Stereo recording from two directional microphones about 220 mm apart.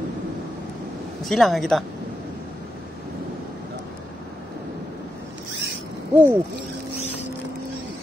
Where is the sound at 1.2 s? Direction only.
Centre (ahead or behind).